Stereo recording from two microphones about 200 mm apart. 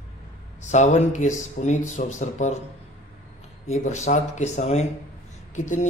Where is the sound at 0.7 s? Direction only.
35° left (ahead or behind).